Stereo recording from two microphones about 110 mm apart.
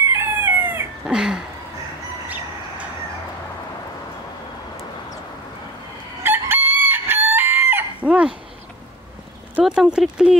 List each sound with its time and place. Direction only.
0.1 s chicken: 20° right (ahead or behind)
1.0 s speech: 5° right (ahead or behind)
6.2 s chicken: 20° right (ahead or behind)
9.6 s speech: 10° right (ahead or behind)